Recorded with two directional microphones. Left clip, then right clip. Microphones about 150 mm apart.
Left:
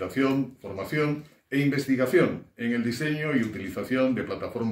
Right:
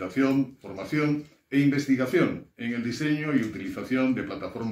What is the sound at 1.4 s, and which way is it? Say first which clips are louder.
Speech: right 2 dB; 15° left (ahead or behind).